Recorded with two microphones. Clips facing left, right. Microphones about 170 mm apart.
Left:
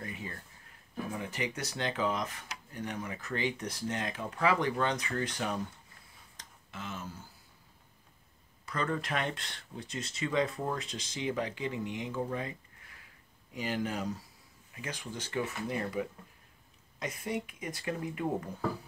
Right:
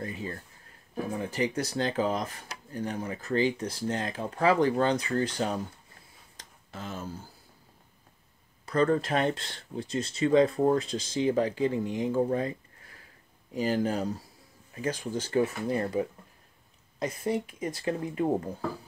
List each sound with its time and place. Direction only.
0.0 s speech: 35° right (ahead or behind)
6.3 s a sound: 35° right (ahead or behind)
8.6 s speech: 35° right (ahead or behind)